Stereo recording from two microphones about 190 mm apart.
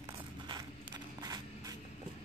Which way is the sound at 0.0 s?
20° right (ahead or behind).